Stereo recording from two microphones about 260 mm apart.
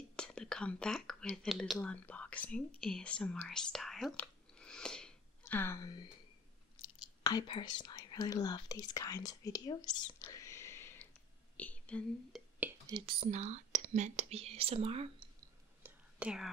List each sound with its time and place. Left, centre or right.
0.1 s speech: centre
12.5 s whispering: centre
13.2 s speech: right
15.8 s whispering: centre